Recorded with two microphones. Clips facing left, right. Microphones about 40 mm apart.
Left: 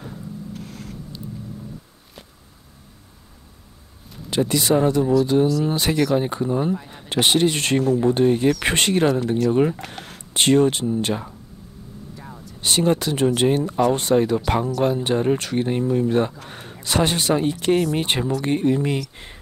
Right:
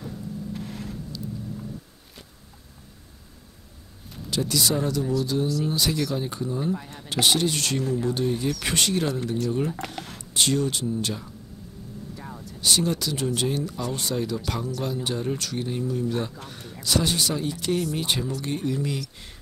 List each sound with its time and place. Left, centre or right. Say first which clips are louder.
4.3 s speech: left 6 dB; left
12.2 s a sound: even; centre
12.5 s speech: left 5 dB; left